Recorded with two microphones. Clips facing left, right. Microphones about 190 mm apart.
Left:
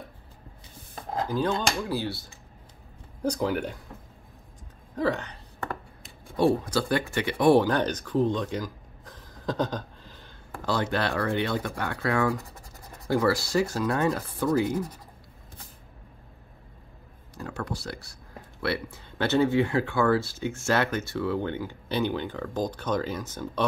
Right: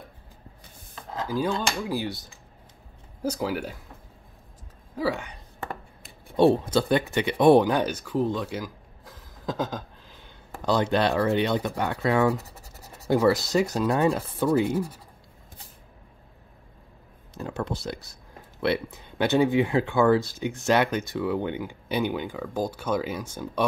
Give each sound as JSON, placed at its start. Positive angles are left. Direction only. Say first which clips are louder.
{"t": 1.9, "sound": "speech", "louder": "right 1 dB", "side_deg": -15}
{"t": 3.2, "sound": "speech", "louder": "left 1 dB", "side_deg": -5}
{"t": 4.9, "sound": "a sound", "louder": "left 1 dB", "side_deg": -10}
{"t": 6.3, "sound": "speech", "louder": "right 4 dB", "side_deg": -25}
{"t": 10.6, "sound": "speech", "louder": "right 4 dB", "side_deg": -20}
{"t": 17.3, "sound": "speech", "louder": "right 3 dB", "side_deg": -20}